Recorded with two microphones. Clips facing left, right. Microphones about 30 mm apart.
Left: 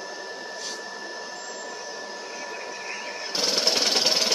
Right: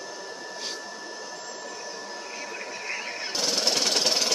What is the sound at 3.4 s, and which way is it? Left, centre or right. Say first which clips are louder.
Jackhammer: left 2 dB; centre.